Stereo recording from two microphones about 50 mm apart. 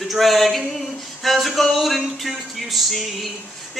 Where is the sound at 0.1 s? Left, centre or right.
Centre.